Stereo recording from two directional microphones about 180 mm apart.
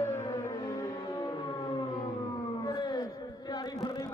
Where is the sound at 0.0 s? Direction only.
15° left (ahead or behind).